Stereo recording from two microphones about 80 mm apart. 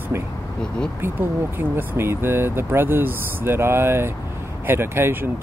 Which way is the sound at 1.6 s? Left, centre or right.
Right.